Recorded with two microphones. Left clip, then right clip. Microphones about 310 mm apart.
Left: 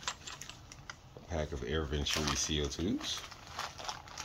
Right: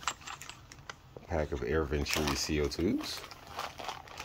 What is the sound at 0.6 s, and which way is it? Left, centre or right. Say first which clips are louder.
Camera: right 2 dB; centre.